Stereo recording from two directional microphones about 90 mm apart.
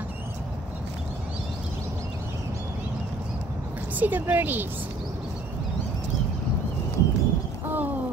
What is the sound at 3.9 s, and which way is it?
Speech, 20° right (ahead or behind).